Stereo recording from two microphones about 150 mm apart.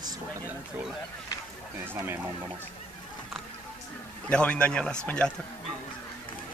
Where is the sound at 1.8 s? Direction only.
15° right (ahead or behind).